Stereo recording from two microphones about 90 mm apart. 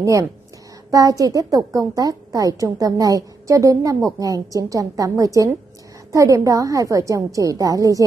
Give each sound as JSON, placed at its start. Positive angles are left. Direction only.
{"t": 0.0, "sound": "a woman's voice", "side_deg": -40}